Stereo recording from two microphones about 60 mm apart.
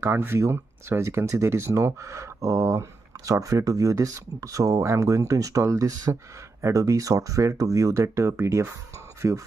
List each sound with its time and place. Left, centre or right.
0.0 s speech: right